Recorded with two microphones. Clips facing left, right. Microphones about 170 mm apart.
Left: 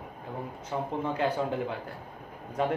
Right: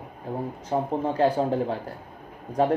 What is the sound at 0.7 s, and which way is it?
Speech, 35° right (ahead or behind).